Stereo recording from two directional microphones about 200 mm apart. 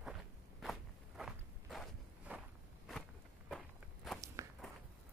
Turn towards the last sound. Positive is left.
turn(degrees=-15)  # may be behind; listen again after turning